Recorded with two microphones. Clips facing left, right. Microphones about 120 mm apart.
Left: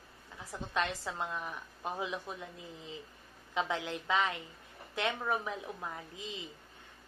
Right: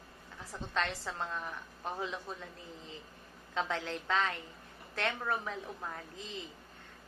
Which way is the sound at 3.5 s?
15° left (ahead or behind).